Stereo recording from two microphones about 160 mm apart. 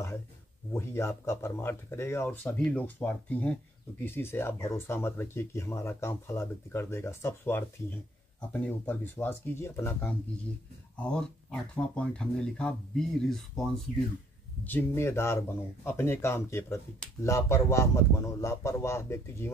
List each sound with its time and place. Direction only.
0.7 s speech: 15° left (ahead or behind)
11.0 s speech: 5° left (ahead or behind)
14.6 s speech: 15° left (ahead or behind)